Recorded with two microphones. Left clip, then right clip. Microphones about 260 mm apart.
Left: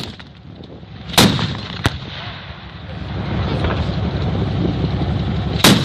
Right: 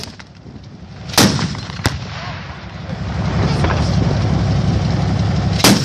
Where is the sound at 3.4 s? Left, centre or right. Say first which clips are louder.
Right 3 dB; right.